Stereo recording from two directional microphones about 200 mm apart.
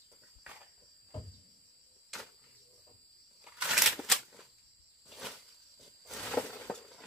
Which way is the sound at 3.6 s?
5° right (ahead or behind).